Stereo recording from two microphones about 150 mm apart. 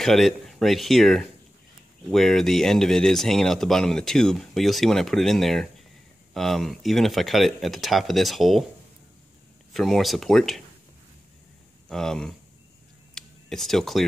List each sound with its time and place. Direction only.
0.0 s speech: centre (ahead or behind)
9.8 s speech: centre (ahead or behind)
11.9 s speech: 5° left (ahead or behind)
13.1 s a sound: centre (ahead or behind)